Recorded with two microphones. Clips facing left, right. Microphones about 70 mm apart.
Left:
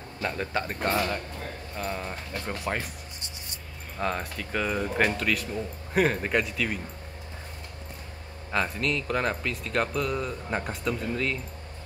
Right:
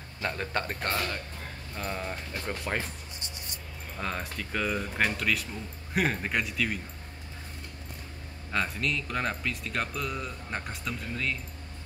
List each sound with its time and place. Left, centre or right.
0.2 s speech: centre
3.9 s speech: centre
8.5 s speech: centre